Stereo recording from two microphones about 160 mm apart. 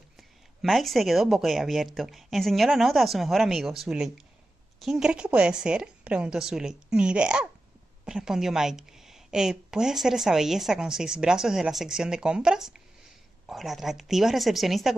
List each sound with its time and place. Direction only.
0.6 s a woman's voice: centre (ahead or behind)